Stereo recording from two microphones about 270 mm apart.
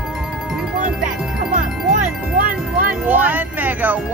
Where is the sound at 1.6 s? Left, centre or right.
Right.